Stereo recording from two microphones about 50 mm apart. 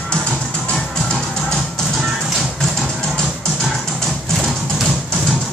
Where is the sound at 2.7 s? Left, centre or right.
Centre.